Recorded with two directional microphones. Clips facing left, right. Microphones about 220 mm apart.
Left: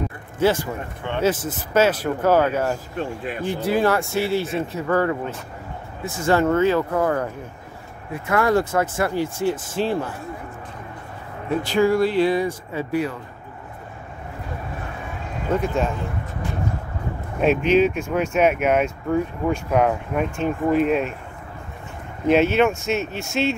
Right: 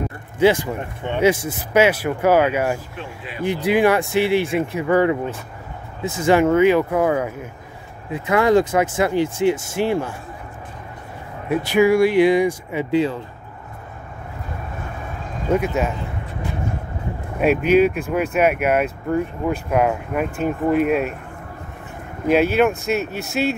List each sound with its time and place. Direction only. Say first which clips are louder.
0.4 s speech: right 4 dB; 15° right (ahead or behind)
3.0 s speech: left 4 dB; 45° left (ahead or behind)
3.4 s speech: right 4 dB; 15° right (ahead or behind)
6.2 s speech: right 3 dB; 15° right (ahead or behind)
11.4 s speech: right 3 dB; 10° right (ahead or behind)
15.5 s speech: right 2 dB; 5° right (ahead or behind)
17.4 s speech: right 2 dB; 5° right (ahead or behind)
22.3 s speech: right 1 dB; 5° right (ahead or behind)